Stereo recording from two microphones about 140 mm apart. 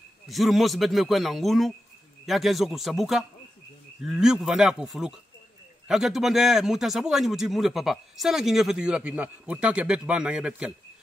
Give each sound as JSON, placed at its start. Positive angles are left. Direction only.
{"t": 0.3, "sound": "speech", "side_deg": 0}